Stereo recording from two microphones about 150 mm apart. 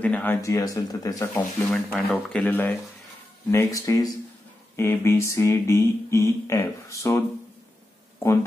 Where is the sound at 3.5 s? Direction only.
20° left (ahead or behind).